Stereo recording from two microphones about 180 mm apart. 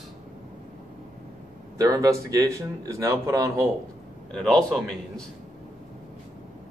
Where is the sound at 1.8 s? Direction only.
20° right (ahead or behind).